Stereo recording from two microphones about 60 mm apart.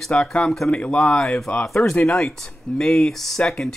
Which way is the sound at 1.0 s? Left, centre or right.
Centre.